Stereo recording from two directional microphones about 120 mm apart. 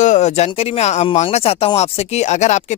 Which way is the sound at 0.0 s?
80° left.